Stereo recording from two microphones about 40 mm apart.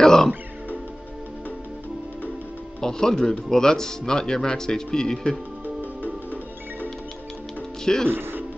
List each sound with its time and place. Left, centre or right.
0.0 s music: centre
2.8 s speech: centre
5.8 s music: right
7.8 s speech: centre
8.1 s speech: right